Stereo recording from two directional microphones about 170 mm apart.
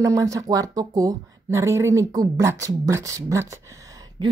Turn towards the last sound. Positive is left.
turn(degrees=-20)  # may be behind; listen again after turning